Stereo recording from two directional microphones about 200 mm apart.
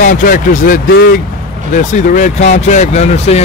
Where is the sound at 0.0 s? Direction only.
40° left (ahead or behind).